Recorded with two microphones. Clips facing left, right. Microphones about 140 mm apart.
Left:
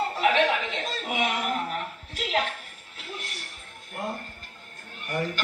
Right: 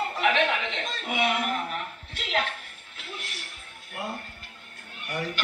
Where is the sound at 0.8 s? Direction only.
40° left (ahead or behind).